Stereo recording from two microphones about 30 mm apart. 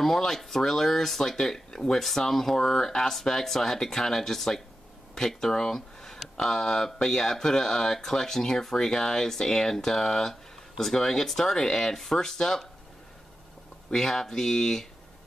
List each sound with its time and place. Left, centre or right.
0.0 s speech: centre
13.9 s speech: centre